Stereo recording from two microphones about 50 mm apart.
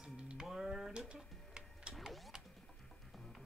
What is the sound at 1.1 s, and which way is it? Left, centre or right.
Music, centre.